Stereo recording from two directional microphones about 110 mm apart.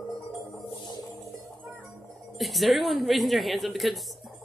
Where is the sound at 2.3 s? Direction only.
Centre (ahead or behind).